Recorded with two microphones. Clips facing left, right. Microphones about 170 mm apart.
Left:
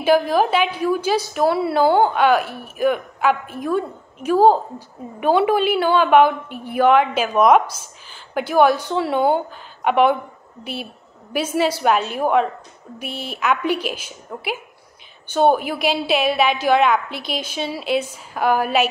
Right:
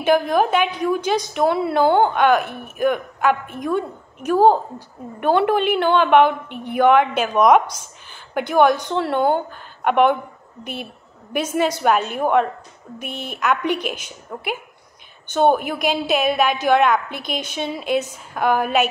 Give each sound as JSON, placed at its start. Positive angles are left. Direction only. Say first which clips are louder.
{"t": 0.0, "sound": "a woman's voice", "louder": "left 1 dB", "side_deg": 5}
{"t": 11.3, "sound": "a woman's voice", "louder": "even", "side_deg": 5}
{"t": 17.1, "sound": "a woman's voice", "louder": "even", "side_deg": -50}
{"t": 17.6, "sound": "a woman's voice", "louder": "even", "side_deg": 5}